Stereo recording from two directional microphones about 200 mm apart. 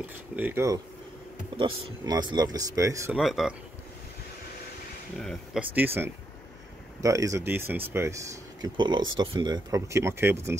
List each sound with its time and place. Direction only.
0.4 s speech: 10° right (ahead or behind)
3.2 s speech: centre (ahead or behind)
5.2 s speech: centre (ahead or behind)